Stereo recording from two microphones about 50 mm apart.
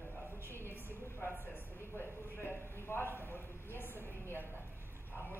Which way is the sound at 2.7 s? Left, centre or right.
Left.